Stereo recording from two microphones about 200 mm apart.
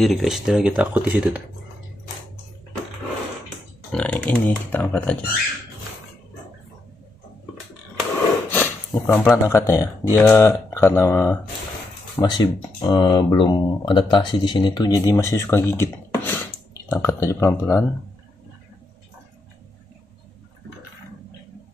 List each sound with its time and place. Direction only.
0.0 s speech: centre (ahead or behind)
3.9 s speech: 5° left (ahead or behind)
8.5 s speech: 10° left (ahead or behind)